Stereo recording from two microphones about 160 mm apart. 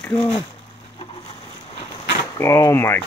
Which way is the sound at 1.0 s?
30° left (ahead or behind).